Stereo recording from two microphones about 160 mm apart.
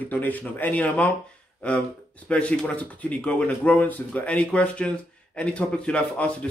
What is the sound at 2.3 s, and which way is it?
Speech, 10° left (ahead or behind).